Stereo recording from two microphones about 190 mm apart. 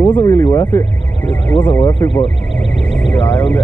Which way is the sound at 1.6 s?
20° left (ahead or behind).